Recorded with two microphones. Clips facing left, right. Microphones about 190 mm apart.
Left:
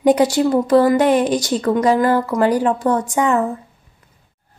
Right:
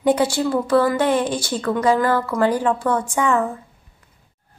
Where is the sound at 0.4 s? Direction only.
20° left (ahead or behind).